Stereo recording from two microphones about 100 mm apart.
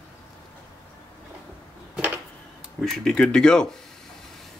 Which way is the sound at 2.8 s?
Centre (ahead or behind).